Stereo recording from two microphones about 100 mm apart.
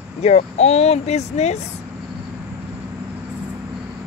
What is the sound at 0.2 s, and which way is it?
Speech, 90° left.